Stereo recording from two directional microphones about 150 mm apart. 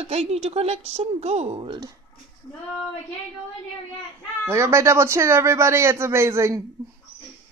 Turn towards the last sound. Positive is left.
turn(degrees=-20)  # may be behind; listen again after turning